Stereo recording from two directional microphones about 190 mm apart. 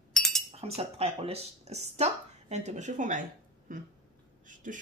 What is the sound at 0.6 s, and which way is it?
Speech, 35° right (ahead or behind).